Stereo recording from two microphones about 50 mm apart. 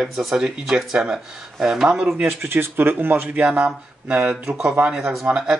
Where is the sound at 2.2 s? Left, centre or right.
Right.